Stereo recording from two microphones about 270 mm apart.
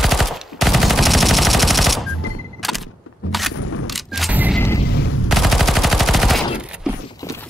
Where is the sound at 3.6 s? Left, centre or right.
Left.